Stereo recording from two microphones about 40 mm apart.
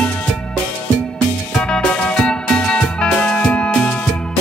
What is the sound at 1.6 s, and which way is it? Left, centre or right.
Music, left.